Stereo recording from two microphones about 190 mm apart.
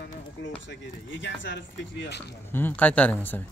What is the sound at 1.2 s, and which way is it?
Speech, 70° left (ahead or behind).